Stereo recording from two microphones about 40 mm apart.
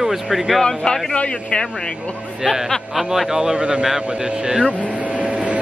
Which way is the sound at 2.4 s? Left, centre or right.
Right.